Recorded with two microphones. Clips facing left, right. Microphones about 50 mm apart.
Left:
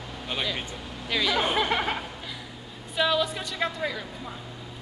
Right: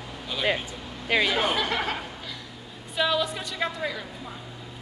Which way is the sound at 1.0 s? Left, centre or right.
Right.